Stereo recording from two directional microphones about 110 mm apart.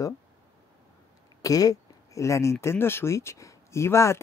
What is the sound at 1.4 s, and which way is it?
Speech, 30° left (ahead or behind).